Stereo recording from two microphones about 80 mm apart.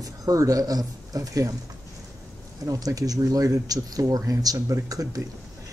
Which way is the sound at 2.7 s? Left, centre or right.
Right.